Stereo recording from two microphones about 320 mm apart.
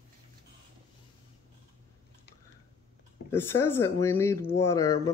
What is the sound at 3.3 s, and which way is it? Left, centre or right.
Speech, centre.